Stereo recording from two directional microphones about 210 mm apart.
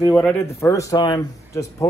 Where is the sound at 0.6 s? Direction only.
15° left (ahead or behind).